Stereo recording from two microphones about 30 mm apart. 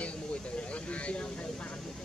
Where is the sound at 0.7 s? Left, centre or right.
Left.